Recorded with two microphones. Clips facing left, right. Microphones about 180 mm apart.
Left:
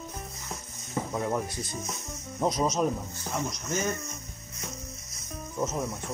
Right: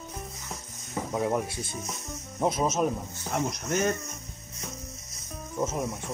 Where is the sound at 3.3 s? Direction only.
60° right (ahead or behind).